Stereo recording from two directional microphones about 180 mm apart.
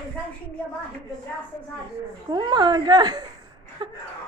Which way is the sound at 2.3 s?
25° right (ahead or behind).